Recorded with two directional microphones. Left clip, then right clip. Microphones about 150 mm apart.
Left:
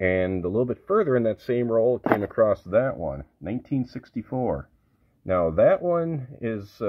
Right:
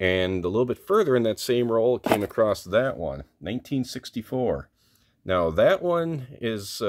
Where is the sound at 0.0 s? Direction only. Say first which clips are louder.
Even; 20° right (ahead or behind).